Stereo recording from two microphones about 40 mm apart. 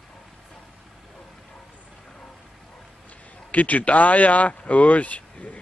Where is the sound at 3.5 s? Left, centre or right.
Left.